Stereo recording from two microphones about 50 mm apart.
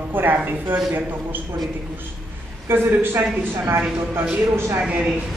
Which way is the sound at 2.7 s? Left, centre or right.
Right.